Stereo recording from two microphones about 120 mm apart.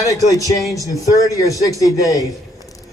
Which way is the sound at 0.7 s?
30° left (ahead or behind).